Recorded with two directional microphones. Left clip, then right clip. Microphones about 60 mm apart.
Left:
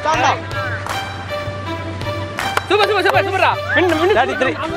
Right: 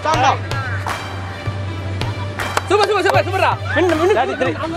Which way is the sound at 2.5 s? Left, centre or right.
Centre.